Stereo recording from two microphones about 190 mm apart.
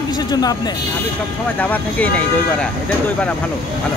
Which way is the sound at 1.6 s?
10° left (ahead or behind).